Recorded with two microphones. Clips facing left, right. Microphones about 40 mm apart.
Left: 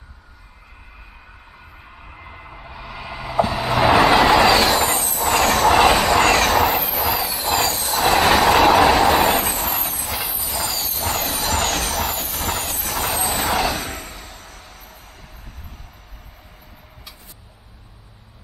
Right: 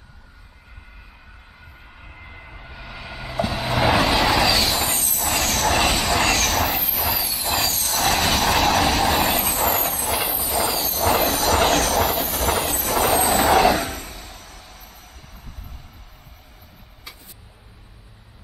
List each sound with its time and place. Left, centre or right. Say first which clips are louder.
1.9 s vehicle: left 3 dB; centre
4.4 s vehicle: left 5 dB; centre
4.6 s train: left 5 dB; centre
6.3 s vehicle: left 5 dB; centre